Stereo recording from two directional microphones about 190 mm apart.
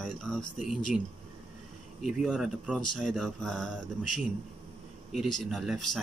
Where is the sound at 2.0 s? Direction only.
Centre (ahead or behind).